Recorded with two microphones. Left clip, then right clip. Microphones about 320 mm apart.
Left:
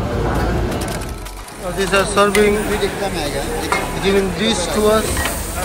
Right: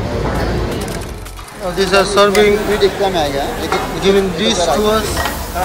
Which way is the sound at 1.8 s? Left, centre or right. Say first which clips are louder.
Right 4 dB; centre.